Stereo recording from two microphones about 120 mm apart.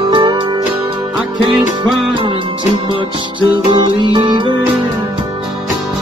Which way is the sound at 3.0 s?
40° right (ahead or behind).